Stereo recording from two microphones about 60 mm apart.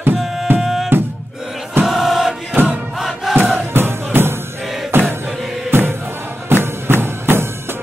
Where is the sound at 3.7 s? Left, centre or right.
Right.